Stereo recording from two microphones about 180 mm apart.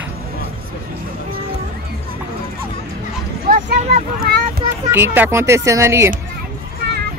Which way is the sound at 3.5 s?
55° right (ahead or behind).